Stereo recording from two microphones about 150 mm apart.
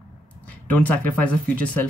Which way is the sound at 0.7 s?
10° left (ahead or behind).